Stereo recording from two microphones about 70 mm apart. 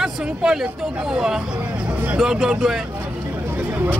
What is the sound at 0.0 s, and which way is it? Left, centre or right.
Speech, centre.